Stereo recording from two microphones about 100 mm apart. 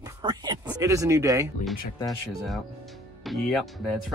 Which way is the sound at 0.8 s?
30° right (ahead or behind).